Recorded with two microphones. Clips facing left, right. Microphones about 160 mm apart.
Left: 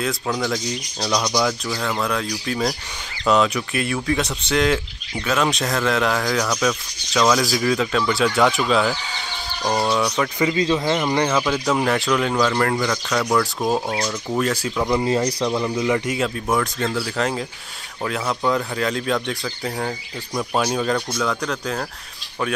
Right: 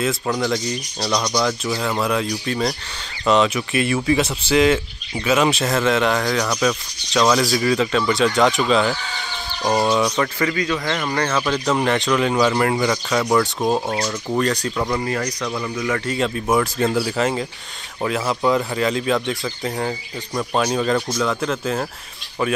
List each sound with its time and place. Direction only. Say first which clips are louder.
0.0 s speech: right 2 dB; centre (ahead or behind)
1.8 s speech: right 2 dB; 10° right (ahead or behind)
10.4 s speech: left 2 dB; 25° left (ahead or behind); by 15.0 s 5° left (ahead or behind)
15.0 s speech: left 4 dB; 25° left (ahead or behind)
16.1 s speech: right 2 dB; centre (ahead or behind)